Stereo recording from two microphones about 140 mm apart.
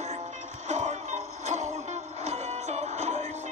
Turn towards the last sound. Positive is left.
turn(degrees=-55)  # may be behind; listen again after turning